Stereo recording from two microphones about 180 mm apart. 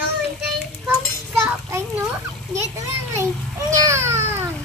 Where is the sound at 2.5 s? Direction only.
15° right (ahead or behind).